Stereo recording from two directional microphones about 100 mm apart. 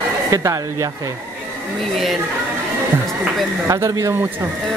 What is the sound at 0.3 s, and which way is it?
Speech, 30° right (ahead or behind).